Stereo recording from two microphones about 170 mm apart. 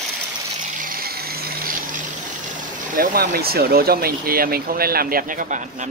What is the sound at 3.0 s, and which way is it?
Speech, 65° right (ahead or behind).